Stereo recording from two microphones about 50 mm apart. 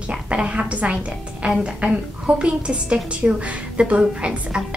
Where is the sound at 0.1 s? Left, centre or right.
Right.